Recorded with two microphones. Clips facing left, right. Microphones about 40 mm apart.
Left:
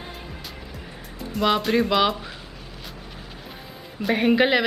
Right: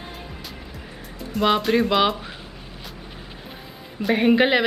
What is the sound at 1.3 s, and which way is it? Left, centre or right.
Speech, centre.